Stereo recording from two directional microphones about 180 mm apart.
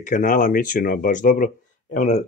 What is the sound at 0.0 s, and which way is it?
Speech, 45° left (ahead or behind).